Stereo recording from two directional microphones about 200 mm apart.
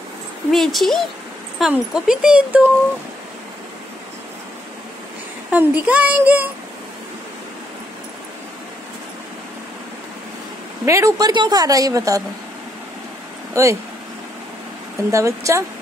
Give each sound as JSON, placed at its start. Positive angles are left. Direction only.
{"t": 0.5, "sound": "speech", "side_deg": 0}
{"t": 5.5, "sound": "a woman's voice", "side_deg": -10}
{"t": 10.9, "sound": "a woman's voice", "side_deg": -15}
{"t": 13.5, "sound": "speech", "side_deg": -15}
{"t": 15.0, "sound": "a woman's voice", "side_deg": -15}